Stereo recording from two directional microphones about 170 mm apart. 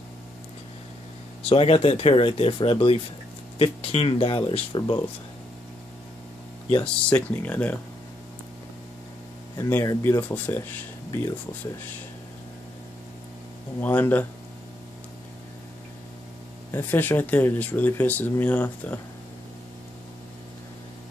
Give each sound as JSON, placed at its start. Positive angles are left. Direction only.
{"t": 1.5, "sound": "speech", "side_deg": 35}
{"t": 6.8, "sound": "speech", "side_deg": 5}
{"t": 9.6, "sound": "speech", "side_deg": 15}
{"t": 13.7, "sound": "speech", "side_deg": 10}
{"t": 16.7, "sound": "speech", "side_deg": 15}